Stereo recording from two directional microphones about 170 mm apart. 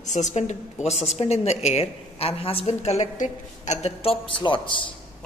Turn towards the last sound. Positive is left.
turn(degrees=30)  # may be behind; listen again after turning